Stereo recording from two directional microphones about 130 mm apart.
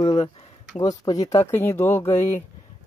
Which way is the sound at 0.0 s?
35° left (ahead or behind).